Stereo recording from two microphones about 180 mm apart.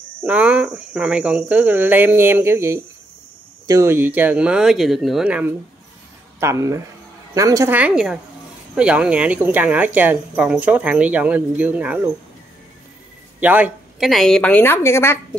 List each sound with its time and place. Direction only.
0.2 s speech: 10° right (ahead or behind)
6.4 s speech: 15° right (ahead or behind)
13.4 s a woman's voice: 10° right (ahead or behind); by 15.1 s 15° left (ahead or behind)